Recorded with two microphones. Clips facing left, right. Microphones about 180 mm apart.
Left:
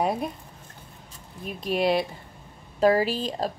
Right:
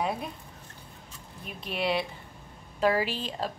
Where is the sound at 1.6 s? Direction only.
40° left (ahead or behind).